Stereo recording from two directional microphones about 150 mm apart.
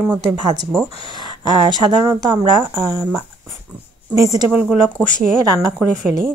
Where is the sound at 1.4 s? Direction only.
25° right (ahead or behind).